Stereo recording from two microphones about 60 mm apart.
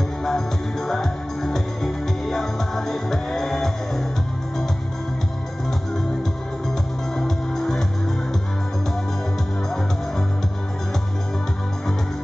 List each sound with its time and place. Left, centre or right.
0.2 s music: centre
7.2 s music: centre